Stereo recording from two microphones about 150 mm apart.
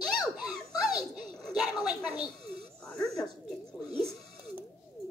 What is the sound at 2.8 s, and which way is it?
Speech, 5° left (ahead or behind).